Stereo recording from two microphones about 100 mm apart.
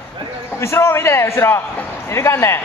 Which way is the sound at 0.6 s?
25° left (ahead or behind).